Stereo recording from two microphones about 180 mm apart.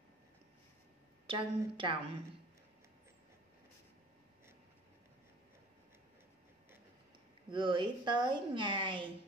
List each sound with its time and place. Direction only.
1.2 s a woman's voice: 30° right (ahead or behind)
7.5 s a woman's voice: 25° right (ahead or behind)